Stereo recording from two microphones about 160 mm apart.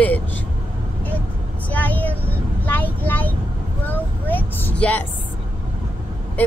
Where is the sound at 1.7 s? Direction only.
10° left (ahead or behind).